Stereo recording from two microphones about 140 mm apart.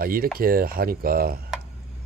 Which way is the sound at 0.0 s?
90° right.